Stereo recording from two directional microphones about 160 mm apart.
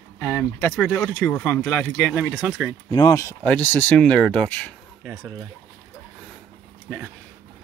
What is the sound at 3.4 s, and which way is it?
Speech, 10° left (ahead or behind).